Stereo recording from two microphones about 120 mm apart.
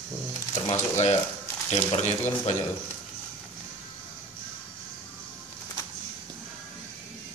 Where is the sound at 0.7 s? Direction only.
60° left (ahead or behind).